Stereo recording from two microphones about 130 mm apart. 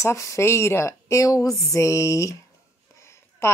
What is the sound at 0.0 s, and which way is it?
A woman's voice, 20° left (ahead or behind).